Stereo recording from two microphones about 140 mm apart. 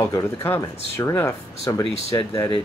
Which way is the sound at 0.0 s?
20° left (ahead or behind).